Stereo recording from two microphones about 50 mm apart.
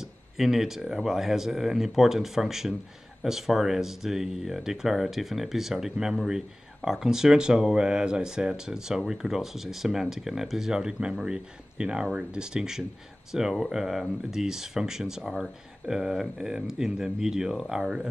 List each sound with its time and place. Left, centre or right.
0.0 s speech: centre